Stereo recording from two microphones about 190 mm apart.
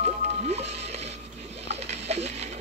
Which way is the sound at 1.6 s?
35° right (ahead or behind).